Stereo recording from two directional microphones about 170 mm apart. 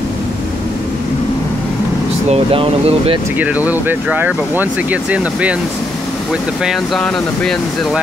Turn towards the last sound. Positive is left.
turn(degrees=5)  # may be behind; listen again after turning